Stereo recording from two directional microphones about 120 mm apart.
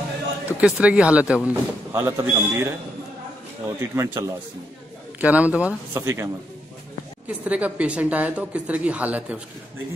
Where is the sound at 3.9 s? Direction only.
25° right (ahead or behind).